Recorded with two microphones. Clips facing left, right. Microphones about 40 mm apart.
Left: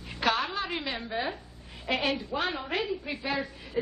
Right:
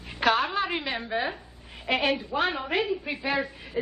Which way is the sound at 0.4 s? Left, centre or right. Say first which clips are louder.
Right 4 dB; centre.